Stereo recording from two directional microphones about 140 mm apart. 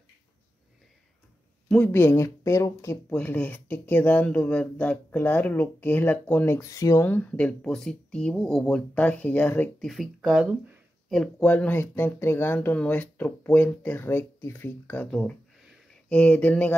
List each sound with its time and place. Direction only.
1.7 s speech: 15° left (ahead or behind)
9.8 s speech: centre (ahead or behind)
11.1 s speech: 5° left (ahead or behind)